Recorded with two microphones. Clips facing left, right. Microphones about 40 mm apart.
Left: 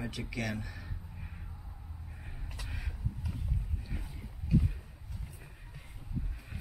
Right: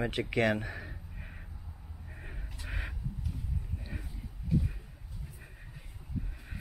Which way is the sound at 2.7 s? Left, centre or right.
Right.